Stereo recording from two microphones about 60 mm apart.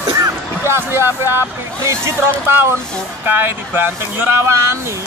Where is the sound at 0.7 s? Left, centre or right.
Right.